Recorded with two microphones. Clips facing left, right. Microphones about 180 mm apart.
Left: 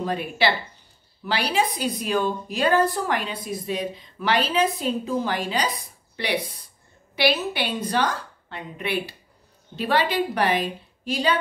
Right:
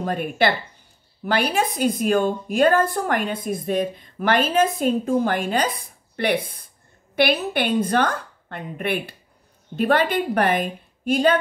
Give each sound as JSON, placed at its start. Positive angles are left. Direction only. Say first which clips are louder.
{"t": 0.0, "sound": "a woman's voice", "louder": "right 2 dB", "side_deg": -50}